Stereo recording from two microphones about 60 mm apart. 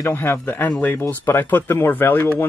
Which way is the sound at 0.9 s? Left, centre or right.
Left.